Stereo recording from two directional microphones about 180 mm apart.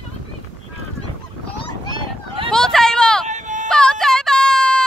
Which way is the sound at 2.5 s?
Centre (ahead or behind).